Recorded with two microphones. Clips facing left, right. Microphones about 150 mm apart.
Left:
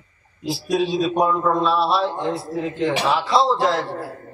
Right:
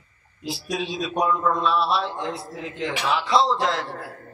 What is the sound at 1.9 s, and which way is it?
A man's voice, 30° left (ahead or behind).